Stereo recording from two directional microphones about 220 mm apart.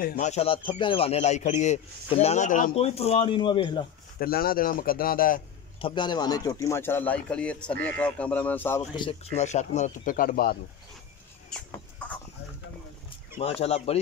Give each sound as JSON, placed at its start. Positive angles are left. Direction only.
{"t": 0.0, "sound": "a man's voice", "side_deg": 35}
{"t": 4.2, "sound": "a man's voice", "side_deg": 45}
{"t": 5.8, "sound": "speech", "side_deg": 20}
{"t": 12.0, "sound": "chicken", "side_deg": 5}
{"t": 13.4, "sound": "a man's voice", "side_deg": 30}